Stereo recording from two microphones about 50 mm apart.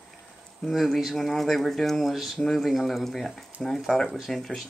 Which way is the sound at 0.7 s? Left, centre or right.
Centre.